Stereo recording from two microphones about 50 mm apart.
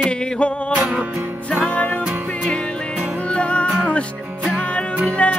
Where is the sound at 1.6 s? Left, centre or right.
Left.